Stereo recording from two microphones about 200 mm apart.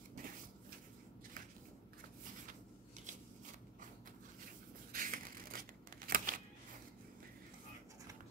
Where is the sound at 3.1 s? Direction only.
35° right (ahead or behind).